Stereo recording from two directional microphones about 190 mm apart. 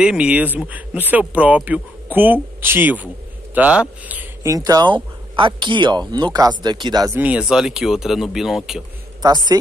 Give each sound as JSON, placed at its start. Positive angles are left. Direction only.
{"t": 0.0, "sound": "speech", "side_deg": -5}
{"t": 7.2, "sound": "speech", "side_deg": -5}